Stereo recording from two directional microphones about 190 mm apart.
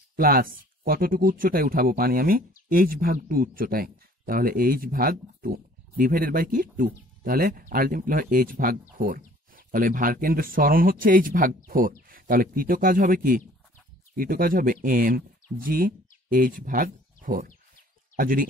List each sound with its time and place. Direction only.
0.1 s speech: 50° right (ahead or behind)